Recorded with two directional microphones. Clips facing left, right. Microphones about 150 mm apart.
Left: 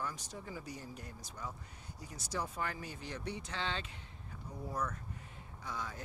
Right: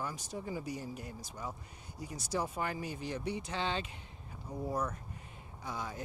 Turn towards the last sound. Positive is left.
turn(degrees=-15)  # may be behind; listen again after turning